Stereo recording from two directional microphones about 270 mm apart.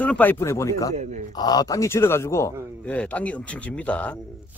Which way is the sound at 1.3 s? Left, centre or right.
Centre.